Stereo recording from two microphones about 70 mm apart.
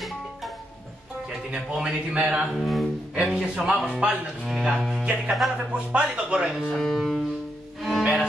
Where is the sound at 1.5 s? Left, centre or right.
Centre.